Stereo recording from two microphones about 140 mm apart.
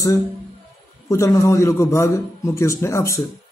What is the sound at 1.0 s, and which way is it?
A man's voice, 20° left (ahead or behind).